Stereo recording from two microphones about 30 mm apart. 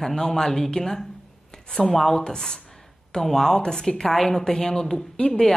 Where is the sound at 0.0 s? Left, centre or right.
Centre.